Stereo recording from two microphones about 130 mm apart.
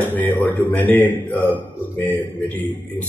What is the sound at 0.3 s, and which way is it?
Speech, 15° left (ahead or behind).